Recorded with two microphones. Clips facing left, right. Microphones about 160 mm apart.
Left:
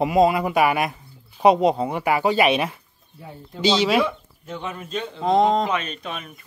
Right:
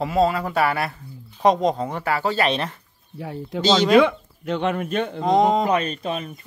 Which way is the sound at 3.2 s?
90° right.